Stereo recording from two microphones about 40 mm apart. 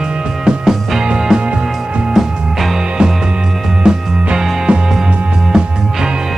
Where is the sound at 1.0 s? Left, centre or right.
Right.